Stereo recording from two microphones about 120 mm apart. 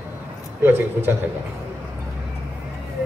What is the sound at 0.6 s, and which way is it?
Speech, 15° right (ahead or behind).